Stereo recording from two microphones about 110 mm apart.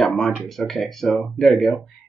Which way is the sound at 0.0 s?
Centre (ahead or behind).